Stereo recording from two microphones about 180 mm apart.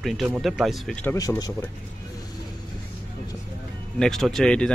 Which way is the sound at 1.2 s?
20° left (ahead or behind).